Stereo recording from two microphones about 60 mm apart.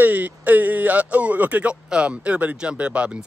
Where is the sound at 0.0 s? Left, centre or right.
Right.